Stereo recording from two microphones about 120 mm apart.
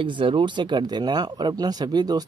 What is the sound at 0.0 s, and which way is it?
Speech, 45° right (ahead or behind).